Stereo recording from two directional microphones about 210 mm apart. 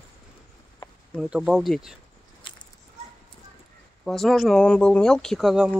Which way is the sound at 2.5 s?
25° left (ahead or behind).